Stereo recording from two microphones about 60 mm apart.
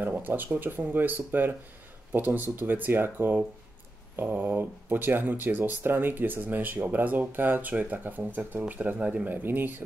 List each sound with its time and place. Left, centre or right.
0.0 s speech: right